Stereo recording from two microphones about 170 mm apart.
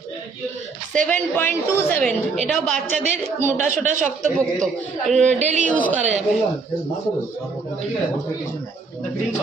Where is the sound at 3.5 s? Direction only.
45° right (ahead or behind).